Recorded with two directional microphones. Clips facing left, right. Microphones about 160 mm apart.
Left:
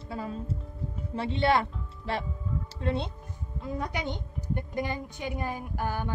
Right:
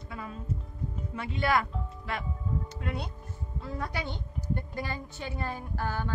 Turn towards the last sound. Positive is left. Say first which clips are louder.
# left 2 dB
turn(degrees=15)  # may be behind; listen again after turning